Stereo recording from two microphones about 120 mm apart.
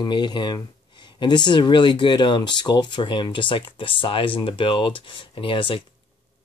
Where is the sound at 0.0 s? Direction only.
35° left (ahead or behind).